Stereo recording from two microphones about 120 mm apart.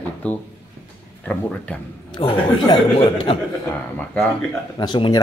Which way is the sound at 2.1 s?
35° left (ahead or behind).